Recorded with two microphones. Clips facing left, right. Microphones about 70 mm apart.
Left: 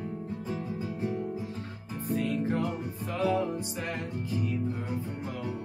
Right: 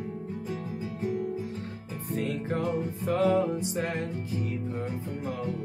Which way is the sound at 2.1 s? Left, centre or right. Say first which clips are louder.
Left 1 dB; right.